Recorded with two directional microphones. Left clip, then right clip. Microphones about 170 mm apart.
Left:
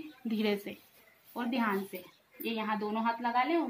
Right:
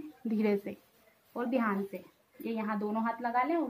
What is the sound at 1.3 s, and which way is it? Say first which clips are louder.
A woman's voice: right 1 dB; 30° right (ahead or behind).